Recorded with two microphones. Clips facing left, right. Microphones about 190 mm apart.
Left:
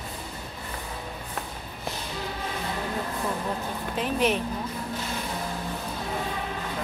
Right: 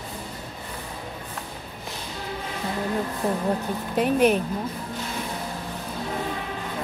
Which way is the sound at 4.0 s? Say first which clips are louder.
Right 6 dB; 45° right (ahead or behind).